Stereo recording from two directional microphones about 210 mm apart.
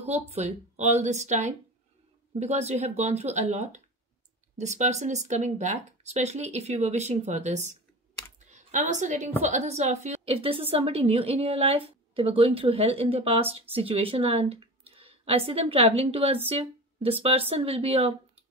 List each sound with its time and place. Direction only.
0.0 s a woman's voice: 30° right (ahead or behind)